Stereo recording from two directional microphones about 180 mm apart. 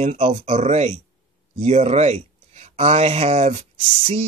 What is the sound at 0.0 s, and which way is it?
Speech, 40° right (ahead or behind).